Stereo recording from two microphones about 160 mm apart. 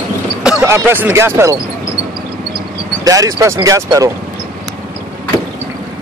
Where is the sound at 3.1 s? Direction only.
20° right (ahead or behind).